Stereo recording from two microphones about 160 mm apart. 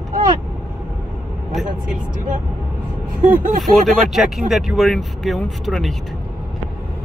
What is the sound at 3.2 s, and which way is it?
Speech, 55° right (ahead or behind).